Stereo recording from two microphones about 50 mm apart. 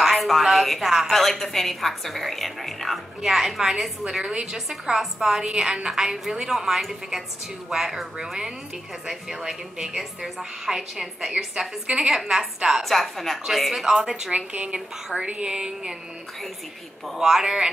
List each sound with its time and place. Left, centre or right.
0.0 s a woman's voice: centre
14.3 s a woman's voice: right
17.2 s a woman's voice: centre